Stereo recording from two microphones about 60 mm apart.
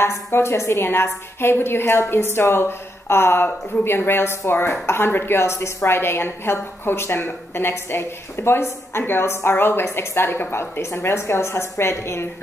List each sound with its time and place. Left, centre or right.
0.0 s a woman's voice: left